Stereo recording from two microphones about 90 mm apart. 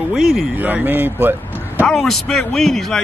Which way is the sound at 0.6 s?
20° right (ahead or behind).